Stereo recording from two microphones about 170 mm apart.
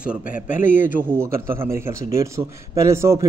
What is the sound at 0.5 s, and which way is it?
Speech, 50° left (ahead or behind).